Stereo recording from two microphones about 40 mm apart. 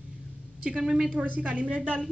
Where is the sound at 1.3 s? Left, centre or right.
Right.